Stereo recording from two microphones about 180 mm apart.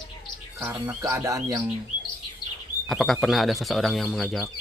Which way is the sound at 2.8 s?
Centre (ahead or behind).